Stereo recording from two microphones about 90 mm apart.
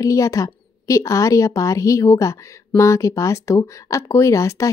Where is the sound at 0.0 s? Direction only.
35° left (ahead or behind).